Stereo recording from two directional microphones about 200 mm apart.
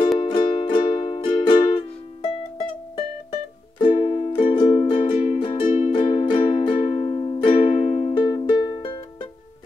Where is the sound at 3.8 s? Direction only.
35° left (ahead or behind).